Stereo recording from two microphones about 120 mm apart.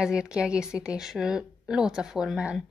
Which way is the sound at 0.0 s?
5° right (ahead or behind).